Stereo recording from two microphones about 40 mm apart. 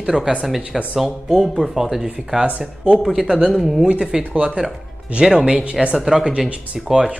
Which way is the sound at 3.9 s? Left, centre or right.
Right.